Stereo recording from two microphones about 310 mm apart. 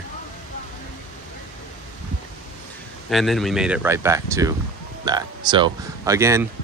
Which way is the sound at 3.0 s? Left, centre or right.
Centre.